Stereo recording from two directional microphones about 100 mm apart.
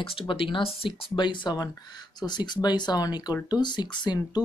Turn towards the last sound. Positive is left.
turn(degrees=45)  # may be behind; listen again after turning